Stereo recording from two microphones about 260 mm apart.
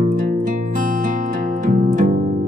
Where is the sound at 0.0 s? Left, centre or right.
Right.